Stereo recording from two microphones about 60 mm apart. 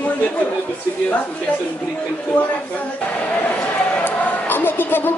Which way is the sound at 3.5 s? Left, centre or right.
Left.